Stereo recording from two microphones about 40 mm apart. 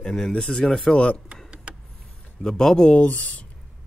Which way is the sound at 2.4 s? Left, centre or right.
Centre.